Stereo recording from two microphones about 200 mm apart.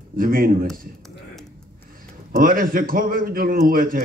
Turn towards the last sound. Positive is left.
turn(degrees=-45)  # may be behind; listen again after turning